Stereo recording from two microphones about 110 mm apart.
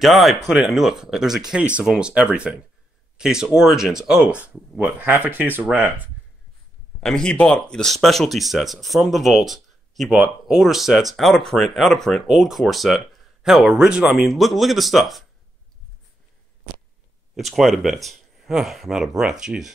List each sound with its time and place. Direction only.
0.0 s speech: centre (ahead or behind)
7.0 s speech: 5° left (ahead or behind)
17.5 s speech: centre (ahead or behind)